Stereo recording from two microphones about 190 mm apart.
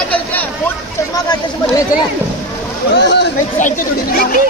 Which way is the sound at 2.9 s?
65° left (ahead or behind).